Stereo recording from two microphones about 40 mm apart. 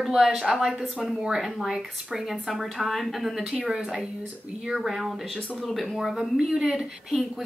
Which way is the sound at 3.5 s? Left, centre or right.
Centre.